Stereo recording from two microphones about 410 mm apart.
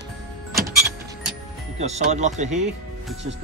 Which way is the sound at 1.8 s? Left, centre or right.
Centre.